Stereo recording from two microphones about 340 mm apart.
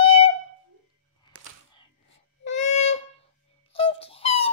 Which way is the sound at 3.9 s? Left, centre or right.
Centre.